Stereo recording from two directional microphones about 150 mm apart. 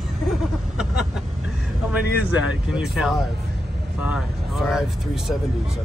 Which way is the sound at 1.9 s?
10° right (ahead or behind).